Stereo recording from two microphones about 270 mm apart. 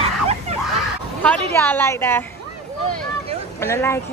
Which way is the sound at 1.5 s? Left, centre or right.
Centre.